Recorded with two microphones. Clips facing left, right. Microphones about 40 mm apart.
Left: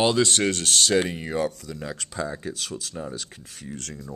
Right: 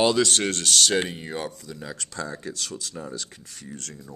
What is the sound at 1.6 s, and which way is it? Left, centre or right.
Speech, left.